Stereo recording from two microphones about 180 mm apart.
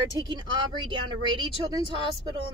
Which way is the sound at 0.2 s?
25° right (ahead or behind).